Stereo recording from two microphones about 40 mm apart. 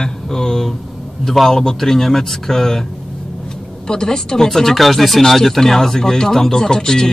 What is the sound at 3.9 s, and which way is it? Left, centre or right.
Speech, centre.